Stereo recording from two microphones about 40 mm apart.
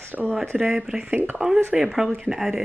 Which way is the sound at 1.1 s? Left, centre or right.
Right.